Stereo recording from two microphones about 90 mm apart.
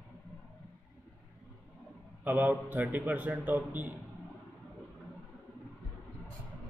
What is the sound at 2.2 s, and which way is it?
A man's voice, 20° right (ahead or behind).